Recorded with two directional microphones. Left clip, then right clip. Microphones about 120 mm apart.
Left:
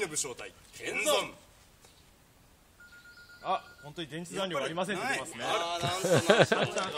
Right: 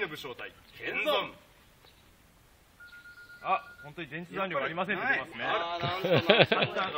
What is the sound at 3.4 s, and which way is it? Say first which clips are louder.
A man's voice: right 2 dB; 55° left (ahead or behind).